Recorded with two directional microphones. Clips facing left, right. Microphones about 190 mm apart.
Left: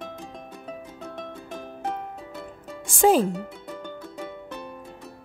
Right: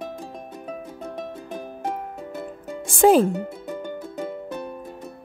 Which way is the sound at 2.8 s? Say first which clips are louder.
Right 3 dB; 60° right (ahead or behind).